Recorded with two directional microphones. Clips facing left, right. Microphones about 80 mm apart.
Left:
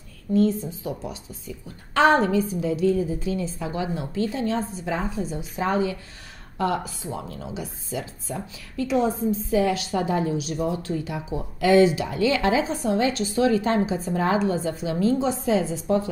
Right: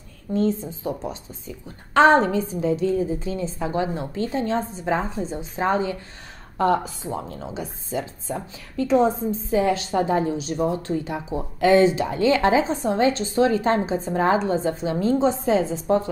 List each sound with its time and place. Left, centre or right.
0.3 s speech: right